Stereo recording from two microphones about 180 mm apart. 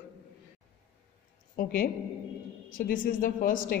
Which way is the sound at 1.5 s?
50° left (ahead or behind).